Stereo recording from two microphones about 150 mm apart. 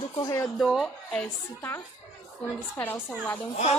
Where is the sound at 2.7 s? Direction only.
15° left (ahead or behind).